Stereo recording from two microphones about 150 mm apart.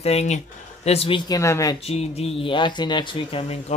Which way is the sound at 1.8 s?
45° left (ahead or behind).